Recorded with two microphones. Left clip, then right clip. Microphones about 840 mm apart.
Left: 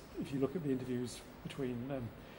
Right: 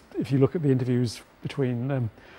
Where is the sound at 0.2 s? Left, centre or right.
Right.